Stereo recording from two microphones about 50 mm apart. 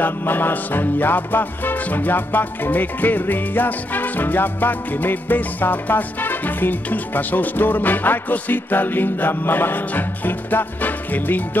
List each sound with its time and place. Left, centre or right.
0.0 s music: left